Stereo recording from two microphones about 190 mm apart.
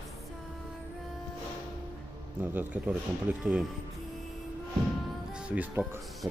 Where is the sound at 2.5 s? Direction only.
5° right (ahead or behind).